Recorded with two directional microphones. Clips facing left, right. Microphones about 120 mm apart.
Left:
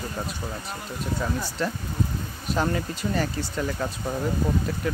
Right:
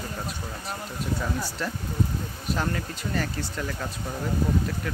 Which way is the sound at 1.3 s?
5° right (ahead or behind).